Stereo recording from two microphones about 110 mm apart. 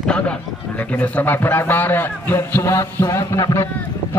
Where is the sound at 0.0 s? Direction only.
10° left (ahead or behind).